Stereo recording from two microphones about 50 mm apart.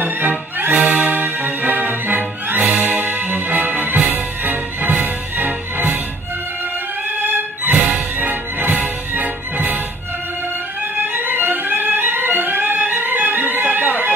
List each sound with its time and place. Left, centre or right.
0.0 s music: right
7.1 s music: right
10.8 s music: right
13.7 s a sound: right